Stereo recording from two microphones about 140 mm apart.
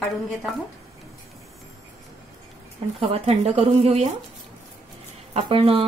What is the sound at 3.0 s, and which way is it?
Speech, 45° right (ahead or behind).